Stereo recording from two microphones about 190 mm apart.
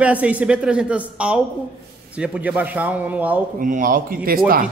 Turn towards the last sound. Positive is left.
turn(degrees=-50)  # may be behind; listen again after turning